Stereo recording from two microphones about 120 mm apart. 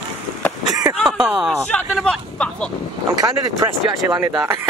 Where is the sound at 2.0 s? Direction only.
5° left (ahead or behind).